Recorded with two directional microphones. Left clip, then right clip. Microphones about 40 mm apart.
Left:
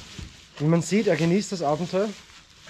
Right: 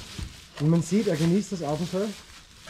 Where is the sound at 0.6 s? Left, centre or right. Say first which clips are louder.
Left 1 dB; centre.